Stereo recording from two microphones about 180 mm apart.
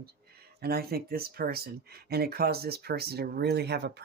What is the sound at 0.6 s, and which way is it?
Speech, 60° right (ahead or behind).